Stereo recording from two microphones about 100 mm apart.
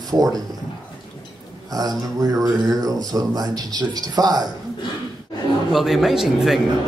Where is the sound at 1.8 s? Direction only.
40° right (ahead or behind).